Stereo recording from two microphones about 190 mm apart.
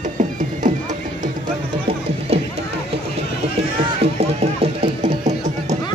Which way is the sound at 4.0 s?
30° right (ahead or behind).